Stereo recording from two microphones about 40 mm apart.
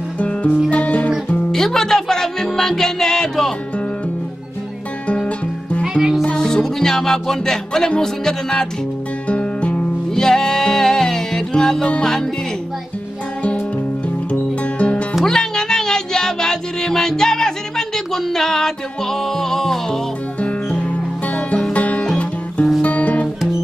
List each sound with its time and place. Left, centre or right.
0.2 s music: left
1.5 s music: centre
5.0 s music: left
5.9 s music: centre
6.3 s music: centre
8.0 s speech: centre
9.3 s music: left
10.1 s music: centre
14.8 s music: left
15.2 s music: centre
20.3 s music: left